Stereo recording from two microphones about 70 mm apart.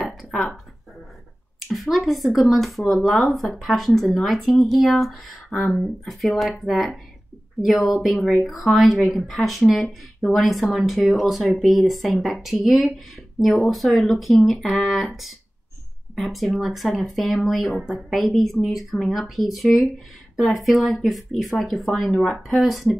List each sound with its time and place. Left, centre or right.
0.3 s speech: centre
1.7 s speech: centre